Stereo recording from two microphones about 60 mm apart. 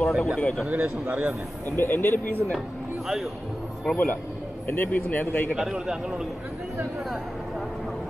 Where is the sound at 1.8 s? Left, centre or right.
Left.